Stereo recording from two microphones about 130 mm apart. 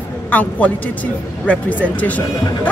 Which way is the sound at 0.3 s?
10° left (ahead or behind).